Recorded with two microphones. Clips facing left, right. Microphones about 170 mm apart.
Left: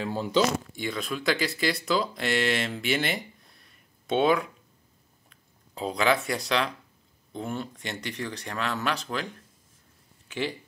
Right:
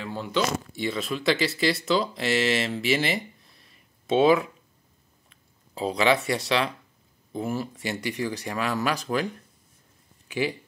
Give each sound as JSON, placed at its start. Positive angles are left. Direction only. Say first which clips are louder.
{"t": 0.0, "sound": "speech", "louder": "left 3 dB", "side_deg": 35}
{"t": 0.7, "sound": "speech", "louder": "right 3 dB", "side_deg": 0}
{"t": 5.8, "sound": "speech", "louder": "right 2 dB", "side_deg": 0}